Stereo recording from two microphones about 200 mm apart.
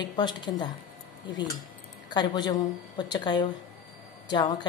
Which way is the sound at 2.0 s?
20° left (ahead or behind).